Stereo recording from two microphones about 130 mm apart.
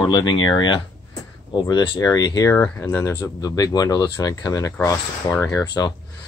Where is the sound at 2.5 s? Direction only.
15° left (ahead or behind).